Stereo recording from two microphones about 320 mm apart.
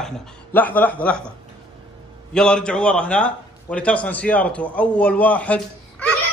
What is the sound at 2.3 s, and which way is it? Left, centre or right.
A man's voice, centre.